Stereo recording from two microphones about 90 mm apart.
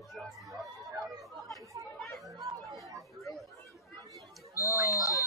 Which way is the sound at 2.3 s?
40° right (ahead or behind).